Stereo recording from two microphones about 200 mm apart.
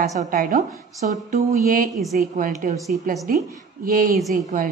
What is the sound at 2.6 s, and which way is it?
Speech, 40° right (ahead or behind).